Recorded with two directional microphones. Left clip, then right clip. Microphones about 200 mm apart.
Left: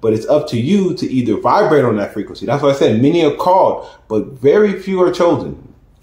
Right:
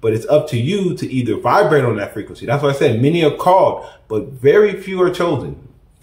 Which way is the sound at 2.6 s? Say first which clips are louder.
Left 4 dB; 5° right (ahead or behind).